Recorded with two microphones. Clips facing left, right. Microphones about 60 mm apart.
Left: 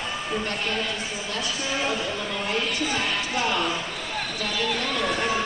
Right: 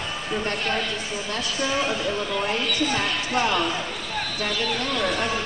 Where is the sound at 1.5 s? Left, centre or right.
Centre.